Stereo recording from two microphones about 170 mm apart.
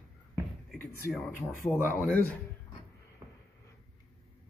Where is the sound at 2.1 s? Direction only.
10° left (ahead or behind).